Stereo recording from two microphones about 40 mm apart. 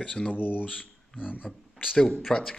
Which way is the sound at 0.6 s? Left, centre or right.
Left.